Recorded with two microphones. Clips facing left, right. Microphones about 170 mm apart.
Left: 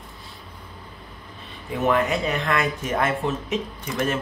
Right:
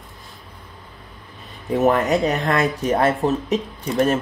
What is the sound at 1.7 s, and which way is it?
Speech, 40° right (ahead or behind).